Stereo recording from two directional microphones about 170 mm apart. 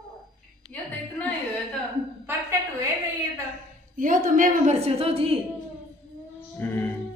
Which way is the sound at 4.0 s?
50° right (ahead or behind).